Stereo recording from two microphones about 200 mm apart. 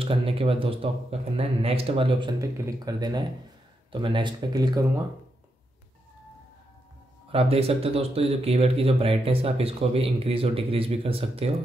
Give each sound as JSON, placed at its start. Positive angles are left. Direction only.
{"t": 0.0, "sound": "speech", "side_deg": -25}
{"t": 7.2, "sound": "speech", "side_deg": -30}